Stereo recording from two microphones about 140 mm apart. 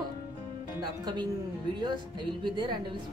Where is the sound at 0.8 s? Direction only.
30° right (ahead or behind).